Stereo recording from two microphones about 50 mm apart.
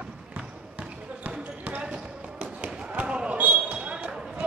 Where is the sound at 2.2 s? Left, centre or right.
Right.